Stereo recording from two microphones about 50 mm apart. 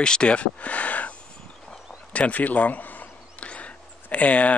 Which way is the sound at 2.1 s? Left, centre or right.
Left.